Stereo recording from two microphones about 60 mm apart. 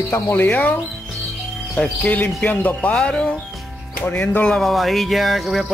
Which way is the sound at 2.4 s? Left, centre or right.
Left.